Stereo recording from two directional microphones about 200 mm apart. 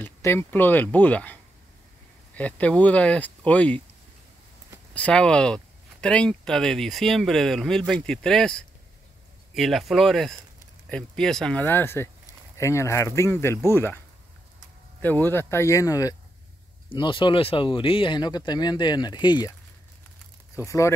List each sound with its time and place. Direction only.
0.0 s speech: 10° left (ahead or behind)
4.9 s speech: 5° left (ahead or behind); by 19.5 s 20° left (ahead or behind)
20.5 s speech: 15° left (ahead or behind)